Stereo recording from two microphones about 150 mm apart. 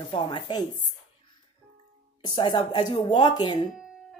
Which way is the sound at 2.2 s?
35° left (ahead or behind).